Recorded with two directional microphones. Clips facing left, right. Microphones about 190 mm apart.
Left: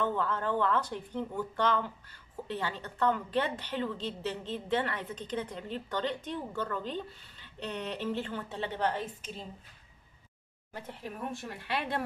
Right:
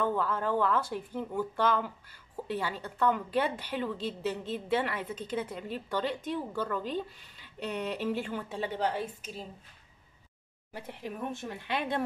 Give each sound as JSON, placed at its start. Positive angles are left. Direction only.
{"t": 0.0, "sound": "a woman's voice", "side_deg": -10}
{"t": 10.7, "sound": "a woman's voice", "side_deg": -10}